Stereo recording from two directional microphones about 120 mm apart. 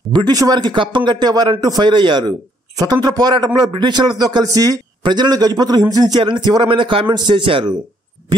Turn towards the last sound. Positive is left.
turn(degrees=-45)  # may be behind; listen again after turning